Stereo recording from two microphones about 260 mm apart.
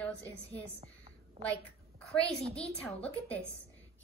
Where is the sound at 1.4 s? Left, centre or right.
Right.